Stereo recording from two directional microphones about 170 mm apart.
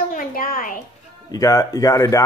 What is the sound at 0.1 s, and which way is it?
Speech, 55° left (ahead or behind).